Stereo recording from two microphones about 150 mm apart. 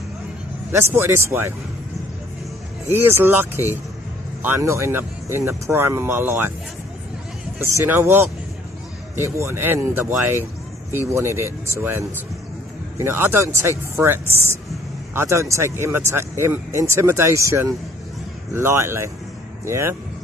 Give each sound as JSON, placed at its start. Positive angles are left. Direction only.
{"t": 0.7, "sound": "speech", "side_deg": -15}
{"t": 2.9, "sound": "speech", "side_deg": -15}
{"t": 7.5, "sound": "speech", "side_deg": -15}